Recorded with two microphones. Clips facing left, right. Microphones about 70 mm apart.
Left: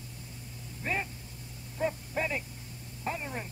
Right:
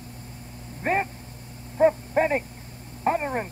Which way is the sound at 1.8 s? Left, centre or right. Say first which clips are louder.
Right 12 dB; right.